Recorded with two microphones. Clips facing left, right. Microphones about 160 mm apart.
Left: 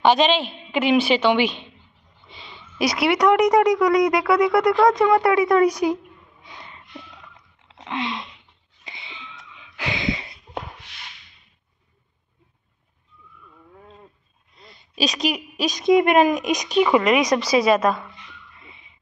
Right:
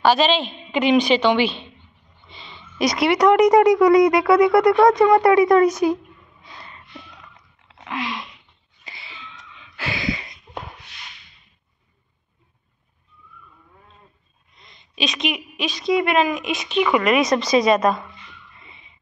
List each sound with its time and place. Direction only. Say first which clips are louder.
0.0 s a woman's voice: even; 20° left (ahead or behind); by 5.7 s centre (ahead or behind)
5.7 s a woman's voice: right 2 dB; 15° left (ahead or behind)
6.4 s snort: even; 15° left (ahead or behind)
7.6 s a sound: left 1 dB; 25° left (ahead or behind)
15.0 s a woman's voice: left 2 dB; 40° left (ahead or behind)
16.8 s a woman's voice: even; 25° left (ahead or behind); by 18.0 s 5° left (ahead or behind)